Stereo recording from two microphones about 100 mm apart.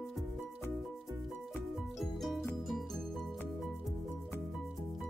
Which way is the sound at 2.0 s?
Centre (ahead or behind).